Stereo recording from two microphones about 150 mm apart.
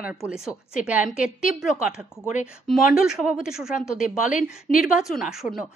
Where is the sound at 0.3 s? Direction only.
10° right (ahead or behind).